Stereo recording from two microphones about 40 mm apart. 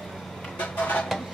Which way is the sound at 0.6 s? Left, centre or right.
Left.